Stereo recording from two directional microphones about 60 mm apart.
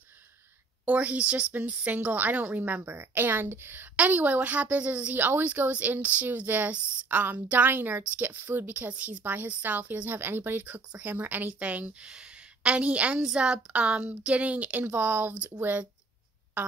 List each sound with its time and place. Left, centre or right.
0.8 s speech: right
2.8 s speech: right
3.9 s a woman's voice: right